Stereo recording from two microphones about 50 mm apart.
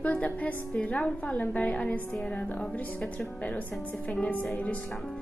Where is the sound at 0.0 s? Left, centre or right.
Left.